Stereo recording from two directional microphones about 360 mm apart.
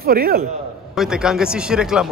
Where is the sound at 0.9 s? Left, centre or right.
Centre.